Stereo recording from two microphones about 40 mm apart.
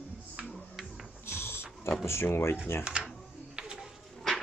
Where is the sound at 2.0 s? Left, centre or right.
Left.